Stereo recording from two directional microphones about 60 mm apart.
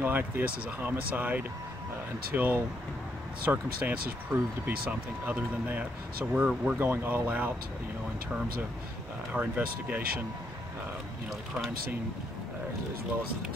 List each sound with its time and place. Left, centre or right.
0.0 s speech: right
6.3 s speech: centre
6.8 s speech: right
9.3 s speech: right